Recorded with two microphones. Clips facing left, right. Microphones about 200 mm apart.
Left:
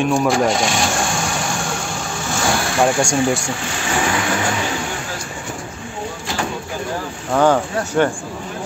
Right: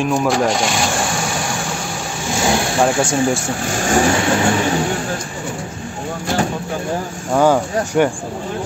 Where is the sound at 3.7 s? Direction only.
45° right (ahead or behind).